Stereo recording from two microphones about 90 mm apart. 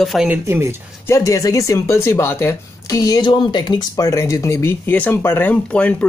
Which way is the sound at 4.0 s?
35° left (ahead or behind).